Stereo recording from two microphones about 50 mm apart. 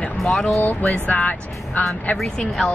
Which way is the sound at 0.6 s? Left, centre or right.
Left.